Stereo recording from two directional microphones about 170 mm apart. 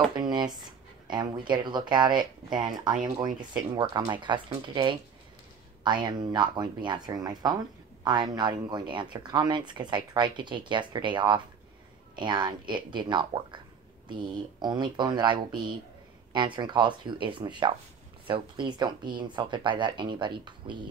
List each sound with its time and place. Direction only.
0.1 s speech: 25° right (ahead or behind)